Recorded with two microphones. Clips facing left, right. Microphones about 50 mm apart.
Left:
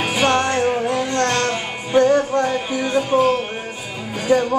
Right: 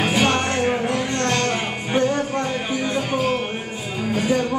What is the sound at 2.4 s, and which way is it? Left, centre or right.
Speech, centre.